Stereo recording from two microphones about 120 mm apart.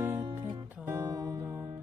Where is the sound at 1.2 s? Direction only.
30° right (ahead or behind).